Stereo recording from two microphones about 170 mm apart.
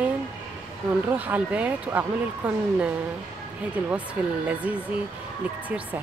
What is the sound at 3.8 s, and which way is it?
Speech, 10° right (ahead or behind).